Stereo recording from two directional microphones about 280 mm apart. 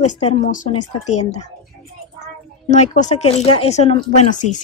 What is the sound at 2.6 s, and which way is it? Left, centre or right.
Speech, left.